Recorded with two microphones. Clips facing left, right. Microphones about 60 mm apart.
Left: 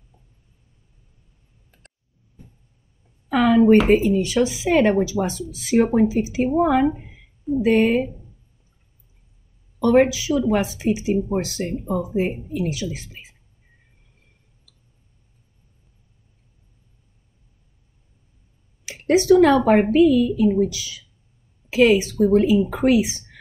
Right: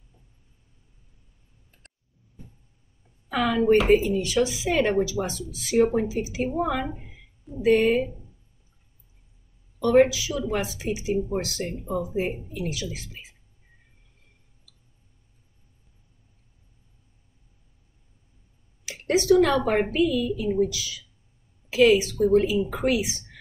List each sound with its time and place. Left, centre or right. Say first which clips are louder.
3.3 s speech: left 6 dB; left
9.8 s a woman's voice: left 2 dB; left
18.9 s a woman's voice: left 5 dB; left
22.8 s speech: left 7 dB; left